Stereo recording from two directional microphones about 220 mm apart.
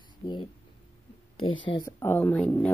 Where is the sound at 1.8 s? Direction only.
10° left (ahead or behind).